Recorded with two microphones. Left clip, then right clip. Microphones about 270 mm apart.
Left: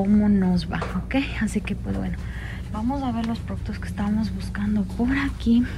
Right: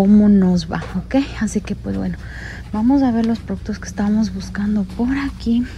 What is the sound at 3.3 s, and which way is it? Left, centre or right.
A woman's voice, centre.